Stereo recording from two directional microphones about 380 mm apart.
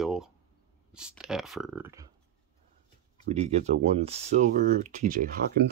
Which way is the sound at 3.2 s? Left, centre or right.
Centre.